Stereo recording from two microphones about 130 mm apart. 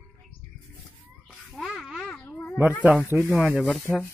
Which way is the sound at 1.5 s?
Centre (ahead or behind).